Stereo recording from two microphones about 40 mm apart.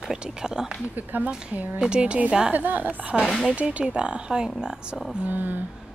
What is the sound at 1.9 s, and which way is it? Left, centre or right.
Speech, right.